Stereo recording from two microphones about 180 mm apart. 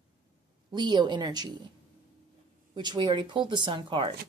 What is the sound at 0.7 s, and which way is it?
Speech, 25° right (ahead or behind).